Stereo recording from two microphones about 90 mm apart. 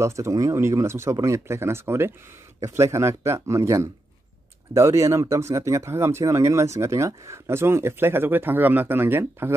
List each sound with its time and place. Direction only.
0.0 s speech: 35° right (ahead or behind)